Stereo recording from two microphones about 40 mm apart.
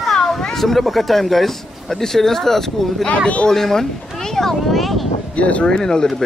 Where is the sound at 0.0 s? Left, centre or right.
Centre.